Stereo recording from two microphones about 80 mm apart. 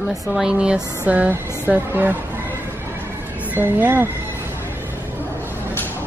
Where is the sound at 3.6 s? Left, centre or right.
Right.